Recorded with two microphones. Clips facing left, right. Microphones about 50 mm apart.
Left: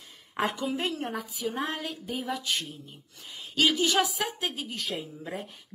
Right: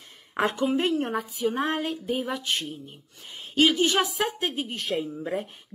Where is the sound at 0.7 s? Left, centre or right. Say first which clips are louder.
Right 6 dB; right.